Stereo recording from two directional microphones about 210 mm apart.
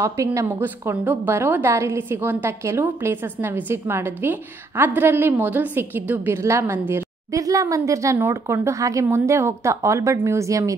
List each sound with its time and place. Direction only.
0.0 s a woman's voice: 15° right (ahead or behind)